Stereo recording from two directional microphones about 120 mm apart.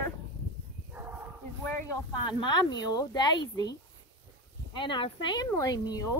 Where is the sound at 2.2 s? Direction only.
40° left (ahead or behind).